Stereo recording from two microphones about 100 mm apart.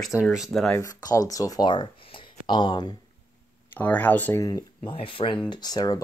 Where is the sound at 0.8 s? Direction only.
35° left (ahead or behind).